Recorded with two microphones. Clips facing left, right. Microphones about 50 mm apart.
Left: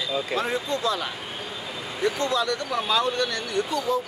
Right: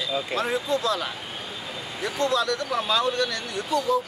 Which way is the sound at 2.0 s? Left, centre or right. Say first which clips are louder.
Even; centre.